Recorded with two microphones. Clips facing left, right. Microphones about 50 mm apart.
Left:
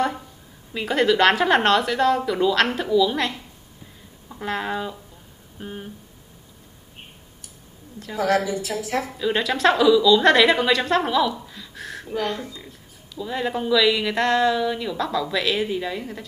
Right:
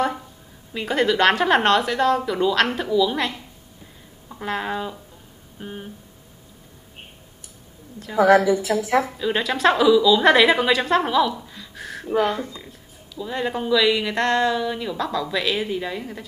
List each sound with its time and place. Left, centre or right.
0.7 s speech: centre
8.2 s a woman's voice: right
9.1 s speech: centre